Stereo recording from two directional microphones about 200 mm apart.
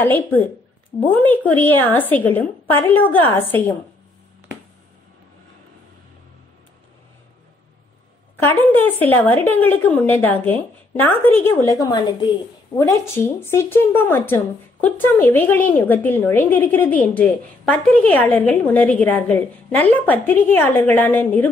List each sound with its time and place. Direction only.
0.0 s speech: 10° left (ahead or behind)
8.4 s speech: 10° left (ahead or behind)